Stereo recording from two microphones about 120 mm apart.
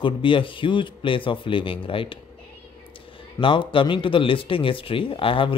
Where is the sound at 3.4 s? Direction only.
45° left (ahead or behind).